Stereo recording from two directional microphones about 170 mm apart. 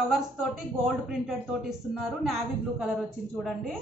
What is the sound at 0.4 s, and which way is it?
A man's voice, 5° right (ahead or behind).